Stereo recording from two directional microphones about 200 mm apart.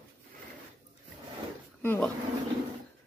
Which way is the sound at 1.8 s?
10° left (ahead or behind).